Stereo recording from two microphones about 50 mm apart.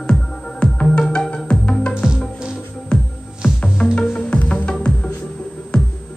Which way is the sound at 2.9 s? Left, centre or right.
Centre.